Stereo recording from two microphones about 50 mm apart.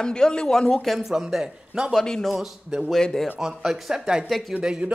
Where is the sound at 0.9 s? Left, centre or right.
Centre.